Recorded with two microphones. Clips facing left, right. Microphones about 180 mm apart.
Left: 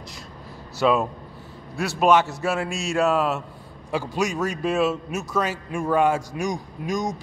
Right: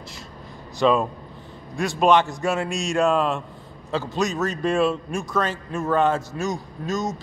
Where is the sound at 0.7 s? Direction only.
5° left (ahead or behind).